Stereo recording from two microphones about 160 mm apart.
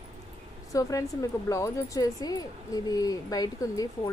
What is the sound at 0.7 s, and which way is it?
A woman's voice, 20° left (ahead or behind).